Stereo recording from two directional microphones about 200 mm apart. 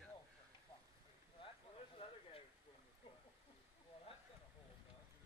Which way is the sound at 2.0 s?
25° left (ahead or behind).